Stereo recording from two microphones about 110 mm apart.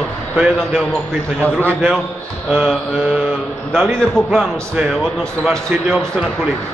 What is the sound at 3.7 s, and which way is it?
A man's voice, centre (ahead or behind).